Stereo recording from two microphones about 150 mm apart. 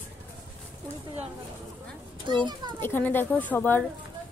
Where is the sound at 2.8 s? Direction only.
15° left (ahead or behind).